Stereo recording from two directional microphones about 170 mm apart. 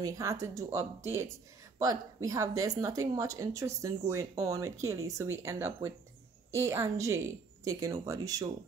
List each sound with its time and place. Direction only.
0.0 s speech: 20° right (ahead or behind)